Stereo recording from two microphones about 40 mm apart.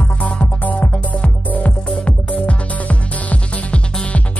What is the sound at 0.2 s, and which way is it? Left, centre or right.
Music, left.